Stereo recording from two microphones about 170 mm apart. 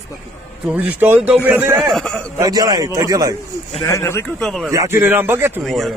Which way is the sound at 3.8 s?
15° left (ahead or behind).